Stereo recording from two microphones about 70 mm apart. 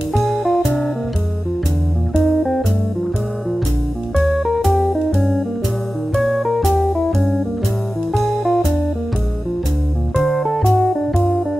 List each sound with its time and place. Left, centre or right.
0.1 s music: centre
2.1 s music: centre
4.1 s music: centre
10.1 s music: centre